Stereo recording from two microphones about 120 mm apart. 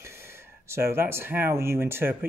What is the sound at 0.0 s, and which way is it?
Speech, 20° right (ahead or behind).